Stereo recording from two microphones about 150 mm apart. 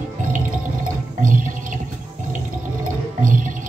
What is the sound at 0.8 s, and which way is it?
Water, 60° right (ahead or behind).